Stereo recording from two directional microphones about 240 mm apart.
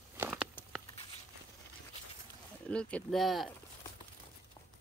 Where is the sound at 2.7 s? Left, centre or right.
Centre.